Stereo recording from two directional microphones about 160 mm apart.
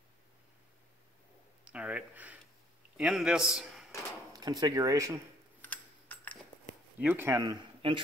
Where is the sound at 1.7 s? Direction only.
10° right (ahead or behind).